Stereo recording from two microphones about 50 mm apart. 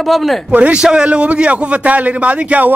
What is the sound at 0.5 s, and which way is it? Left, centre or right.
Speech, right.